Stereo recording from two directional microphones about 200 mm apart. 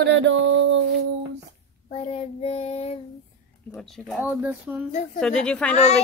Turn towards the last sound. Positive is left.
turn(degrees=5)  # may be behind; listen again after turning